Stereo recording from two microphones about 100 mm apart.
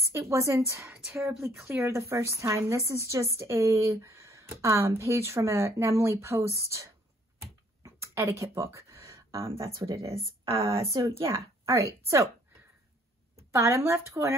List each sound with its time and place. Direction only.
0.0 s a woman's voice: 30° right (ahead or behind)
7.8 s a sound: 30° right (ahead or behind)
9.4 s speech: 65° right (ahead or behind)
10.9 s a woman's voice: 35° right (ahead or behind)
11.2 s speech: 25° right (ahead or behind)
13.5 s speech: 30° right (ahead or behind)